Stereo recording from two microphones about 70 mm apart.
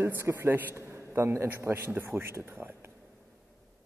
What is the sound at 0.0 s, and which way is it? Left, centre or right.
A man's voice, right.